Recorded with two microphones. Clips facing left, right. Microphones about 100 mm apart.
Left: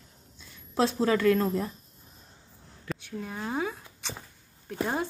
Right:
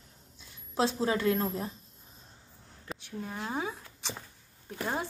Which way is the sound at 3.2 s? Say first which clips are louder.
Left 3 dB; 25° right (ahead or behind).